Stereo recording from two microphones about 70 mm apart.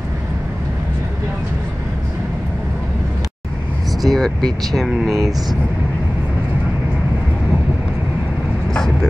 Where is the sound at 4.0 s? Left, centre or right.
Centre.